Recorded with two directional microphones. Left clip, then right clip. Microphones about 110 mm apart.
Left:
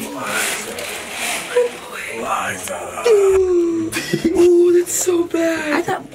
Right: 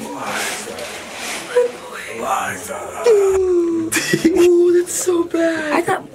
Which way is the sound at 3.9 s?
75° right (ahead or behind).